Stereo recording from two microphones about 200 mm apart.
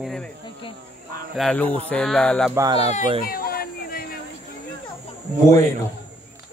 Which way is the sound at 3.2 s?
50° left (ahead or behind).